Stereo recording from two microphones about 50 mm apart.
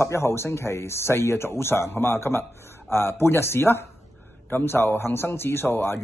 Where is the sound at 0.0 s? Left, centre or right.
Left.